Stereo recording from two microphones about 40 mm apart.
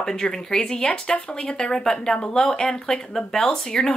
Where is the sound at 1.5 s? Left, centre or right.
Centre.